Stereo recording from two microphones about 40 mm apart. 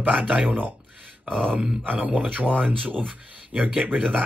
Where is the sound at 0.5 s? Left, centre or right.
Right.